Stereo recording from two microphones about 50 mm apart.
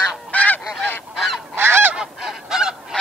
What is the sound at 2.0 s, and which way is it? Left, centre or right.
Goose, centre.